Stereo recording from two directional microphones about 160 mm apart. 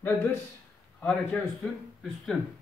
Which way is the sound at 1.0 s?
5° left (ahead or behind).